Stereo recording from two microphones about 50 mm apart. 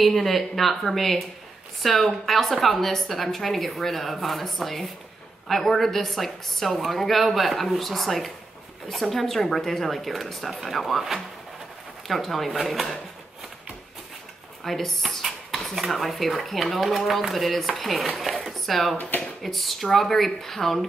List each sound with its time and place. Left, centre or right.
0.0 s a woman's voice: centre
14.6 s a woman's voice: centre
18.9 s speech: left
19.4 s a woman's voice: centre